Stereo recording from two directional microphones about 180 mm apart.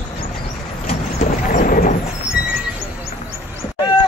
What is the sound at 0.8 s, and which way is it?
Vehicle, 40° left (ahead or behind).